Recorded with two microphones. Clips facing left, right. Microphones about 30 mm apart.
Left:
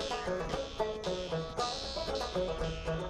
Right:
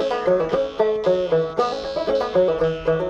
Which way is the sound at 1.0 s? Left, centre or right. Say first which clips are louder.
Right 17 dB; centre.